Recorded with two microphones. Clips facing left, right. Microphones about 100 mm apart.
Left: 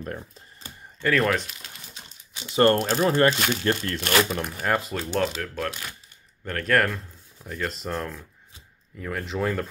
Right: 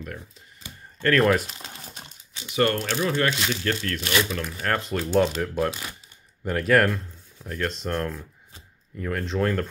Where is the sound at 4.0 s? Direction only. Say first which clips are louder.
Left 3 dB; 50° left (ahead or behind).